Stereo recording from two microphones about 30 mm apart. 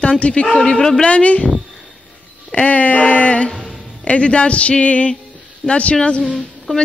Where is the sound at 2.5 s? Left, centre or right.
Left.